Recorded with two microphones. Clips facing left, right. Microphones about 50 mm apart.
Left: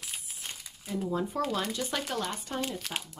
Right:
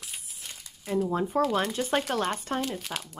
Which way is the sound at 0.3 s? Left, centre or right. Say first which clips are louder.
Left 1 dB; left.